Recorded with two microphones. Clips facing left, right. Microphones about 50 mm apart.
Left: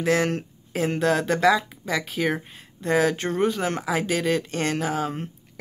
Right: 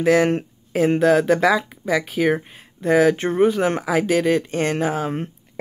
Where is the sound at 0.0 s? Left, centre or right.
Centre.